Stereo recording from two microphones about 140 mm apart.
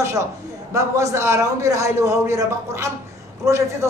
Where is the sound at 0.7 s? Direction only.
20° right (ahead or behind).